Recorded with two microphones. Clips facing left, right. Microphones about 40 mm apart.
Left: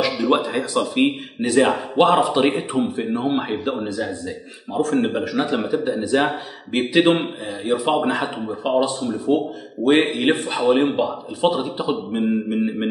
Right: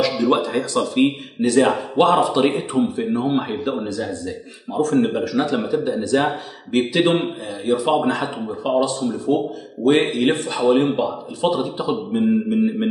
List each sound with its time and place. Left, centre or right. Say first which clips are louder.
0.3 s a man's voice: even; centre